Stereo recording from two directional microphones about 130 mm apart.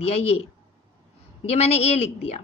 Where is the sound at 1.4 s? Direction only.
55° left (ahead or behind).